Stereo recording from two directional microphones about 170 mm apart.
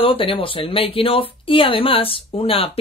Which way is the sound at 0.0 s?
30° left (ahead or behind).